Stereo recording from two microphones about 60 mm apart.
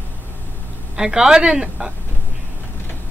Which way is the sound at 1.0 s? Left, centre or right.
Centre.